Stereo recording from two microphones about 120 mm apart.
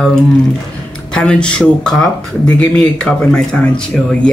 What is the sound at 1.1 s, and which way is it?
Speech, 5° left (ahead or behind).